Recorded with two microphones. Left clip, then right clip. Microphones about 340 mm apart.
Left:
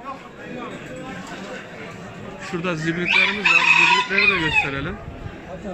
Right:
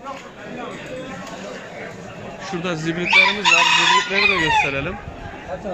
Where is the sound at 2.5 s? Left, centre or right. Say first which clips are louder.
Even; centre.